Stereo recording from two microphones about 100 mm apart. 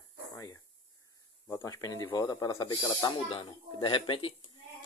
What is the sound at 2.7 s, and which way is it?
Speech, 50° left (ahead or behind).